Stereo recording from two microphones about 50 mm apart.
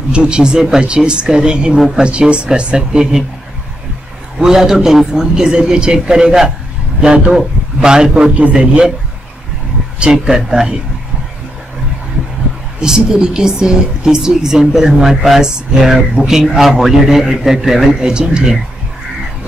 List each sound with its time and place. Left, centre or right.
0.1 s speech: centre
4.4 s speech: centre
10.1 s speech: centre
12.8 s speech: centre